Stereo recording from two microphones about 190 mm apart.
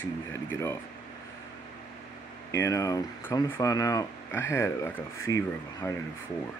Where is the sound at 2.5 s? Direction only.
15° left (ahead or behind).